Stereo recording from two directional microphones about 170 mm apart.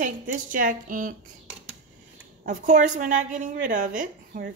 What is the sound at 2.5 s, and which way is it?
A woman's voice, 50° right (ahead or behind).